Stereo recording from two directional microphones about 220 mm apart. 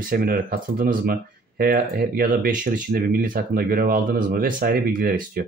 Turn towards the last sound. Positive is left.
turn(degrees=-40)  # may be behind; listen again after turning